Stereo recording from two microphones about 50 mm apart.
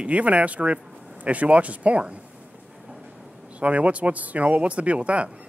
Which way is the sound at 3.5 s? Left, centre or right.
Right.